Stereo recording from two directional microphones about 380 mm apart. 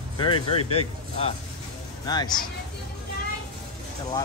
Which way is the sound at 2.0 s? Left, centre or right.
Centre.